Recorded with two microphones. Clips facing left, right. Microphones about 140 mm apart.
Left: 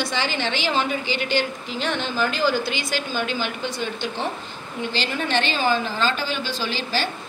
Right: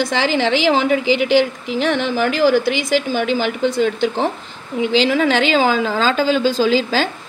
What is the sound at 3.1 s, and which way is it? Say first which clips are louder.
Speech: right 7 dB; 70° right (ahead or behind).